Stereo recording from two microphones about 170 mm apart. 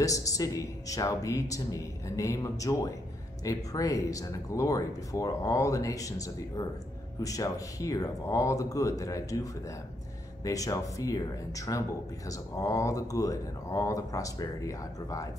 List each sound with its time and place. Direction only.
0.0 s speech: 20° left (ahead or behind)